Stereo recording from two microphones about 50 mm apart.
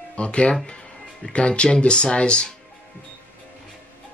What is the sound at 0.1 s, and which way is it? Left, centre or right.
Speech, left.